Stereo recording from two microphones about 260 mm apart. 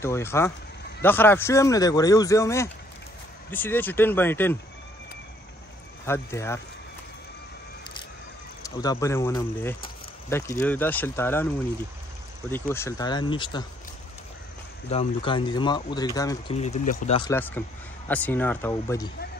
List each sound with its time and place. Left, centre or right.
0.0 s speech: centre
6.0 s speech: centre
8.6 s speech: centre
12.4 s speech: centre
14.9 s speech: left
17.2 s speech: centre